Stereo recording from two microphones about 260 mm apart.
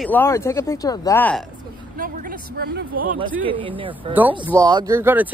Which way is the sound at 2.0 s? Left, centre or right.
Right.